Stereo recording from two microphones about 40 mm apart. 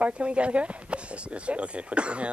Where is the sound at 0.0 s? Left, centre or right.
Right.